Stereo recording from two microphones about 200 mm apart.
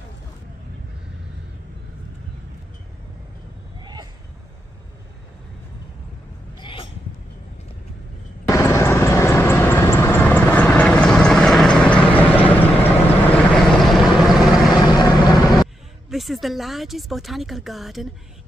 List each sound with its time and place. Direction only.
3.8 s a sound: 20° right (ahead or behind)
6.6 s hiccup: 25° left (ahead or behind)
8.5 s vehicle: 15° left (ahead or behind)
14.9 s vehicle: 20° left (ahead or behind)
16.1 s speech: centre (ahead or behind)